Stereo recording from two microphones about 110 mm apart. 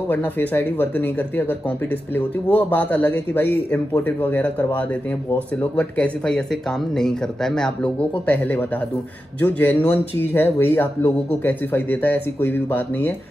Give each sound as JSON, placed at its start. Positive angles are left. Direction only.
{"t": 0.1, "sound": "speech", "side_deg": 15}